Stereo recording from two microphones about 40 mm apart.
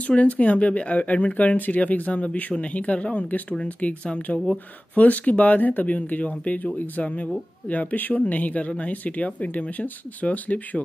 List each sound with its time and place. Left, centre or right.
0.0 s speech: left